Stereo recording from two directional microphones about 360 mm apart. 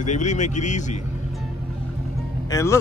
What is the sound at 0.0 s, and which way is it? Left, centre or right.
Speech, centre.